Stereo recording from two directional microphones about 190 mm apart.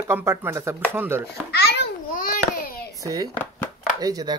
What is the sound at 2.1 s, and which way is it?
Babbling, 45° left (ahead or behind).